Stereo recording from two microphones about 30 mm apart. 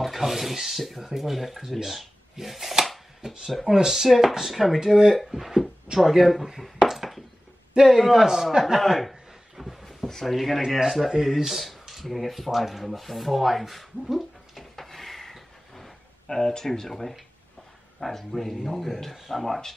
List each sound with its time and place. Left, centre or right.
0.2 s speech: centre
3.2 s speech: right; by 6.4 s centre
6.8 s a sound: centre
7.7 s a man's voice: centre
8.0 s speech: centre
8.7 s speech: centre
9.6 s a sound: centre
10.2 s speech: centre
10.8 s speech: centre
14.6 s a sound: centre
18.0 s speech: centre